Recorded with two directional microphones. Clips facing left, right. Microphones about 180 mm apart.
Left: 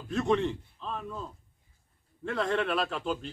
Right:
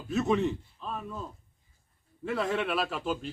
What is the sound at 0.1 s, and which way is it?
A man's voice, 5° right (ahead or behind).